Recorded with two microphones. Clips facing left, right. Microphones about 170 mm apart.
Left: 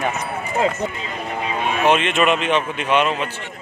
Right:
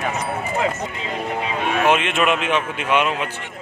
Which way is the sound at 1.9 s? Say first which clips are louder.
Left 3 dB; 5° right (ahead or behind).